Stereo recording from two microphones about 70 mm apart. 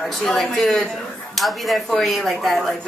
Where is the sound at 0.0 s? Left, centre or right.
Centre.